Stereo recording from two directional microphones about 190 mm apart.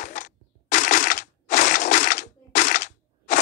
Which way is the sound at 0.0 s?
40° left (ahead or behind).